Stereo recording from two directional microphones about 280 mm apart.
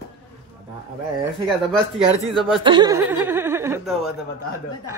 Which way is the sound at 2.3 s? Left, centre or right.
Centre.